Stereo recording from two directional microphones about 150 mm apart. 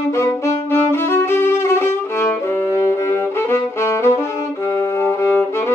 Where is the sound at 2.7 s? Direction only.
20° left (ahead or behind).